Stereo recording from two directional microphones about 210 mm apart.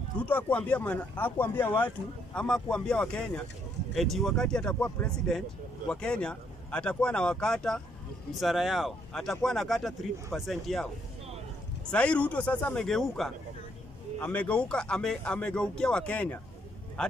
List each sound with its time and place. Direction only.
0.2 s a man's voice: 5° left (ahead or behind)
11.9 s a man's voice: 5° left (ahead or behind)